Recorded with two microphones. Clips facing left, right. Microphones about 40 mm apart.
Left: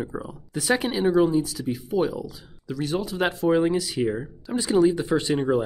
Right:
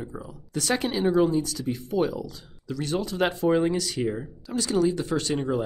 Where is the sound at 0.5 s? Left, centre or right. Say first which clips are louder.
Left 2 dB; centre.